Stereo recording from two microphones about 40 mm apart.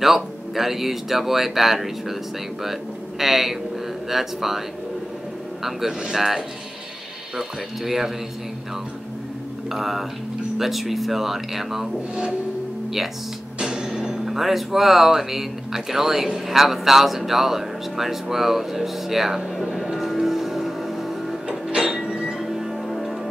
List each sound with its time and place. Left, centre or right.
0.0 s speech: centre
9.7 s speech: centre
13.6 s music: right
13.9 s speech: centre
21.5 s a sound: right
22.4 s music: centre